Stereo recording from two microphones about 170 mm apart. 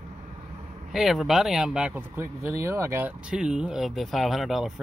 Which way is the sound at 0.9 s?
Centre (ahead or behind).